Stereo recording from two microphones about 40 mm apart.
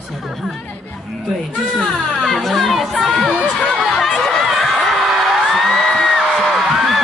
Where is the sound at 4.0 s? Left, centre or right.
Centre.